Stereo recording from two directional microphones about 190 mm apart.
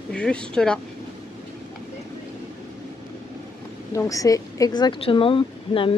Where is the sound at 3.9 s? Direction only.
15° left (ahead or behind).